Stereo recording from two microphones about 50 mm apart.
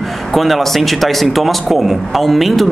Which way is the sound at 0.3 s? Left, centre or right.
Centre.